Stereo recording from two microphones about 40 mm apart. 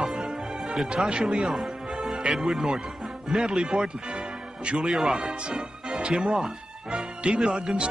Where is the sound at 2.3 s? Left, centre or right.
Centre.